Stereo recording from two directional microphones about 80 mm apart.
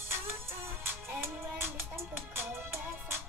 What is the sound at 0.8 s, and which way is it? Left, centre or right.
Music, right.